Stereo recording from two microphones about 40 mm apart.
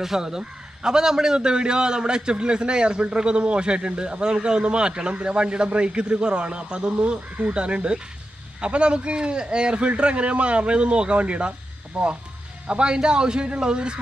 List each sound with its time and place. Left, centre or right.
0.0 s a man's voice: centre